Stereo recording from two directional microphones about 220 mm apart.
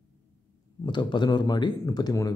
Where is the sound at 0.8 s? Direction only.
20° left (ahead or behind).